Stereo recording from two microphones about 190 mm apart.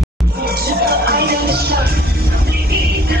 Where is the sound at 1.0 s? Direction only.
55° right (ahead or behind).